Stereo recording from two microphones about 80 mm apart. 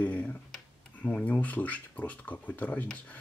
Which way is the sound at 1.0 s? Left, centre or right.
Left.